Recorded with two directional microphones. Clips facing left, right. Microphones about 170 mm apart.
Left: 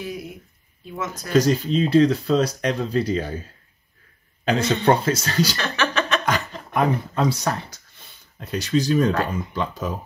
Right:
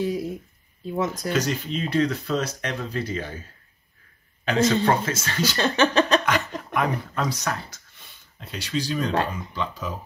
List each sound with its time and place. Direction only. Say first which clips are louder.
0.0 s speech: right 6 dB; 30° right (ahead or behind)
1.3 s speech: left 7 dB; 35° left (ahead or behind)
4.5 s speech: left 1 dB; 30° left (ahead or behind)
5.6 s speech: right 4 dB; 30° right (ahead or behind)
6.7 s speech: left 4 dB; 30° left (ahead or behind)
8.4 s speech: left 7 dB; 45° left (ahead or behind)